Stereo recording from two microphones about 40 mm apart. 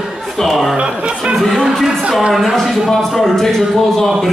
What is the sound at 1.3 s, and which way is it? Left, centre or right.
A man's voice, centre.